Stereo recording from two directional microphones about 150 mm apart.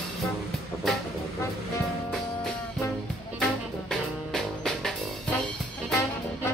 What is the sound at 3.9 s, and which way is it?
Music, centre (ahead or behind).